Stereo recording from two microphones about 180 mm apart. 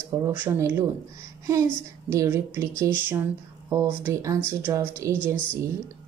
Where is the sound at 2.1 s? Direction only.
15° right (ahead or behind).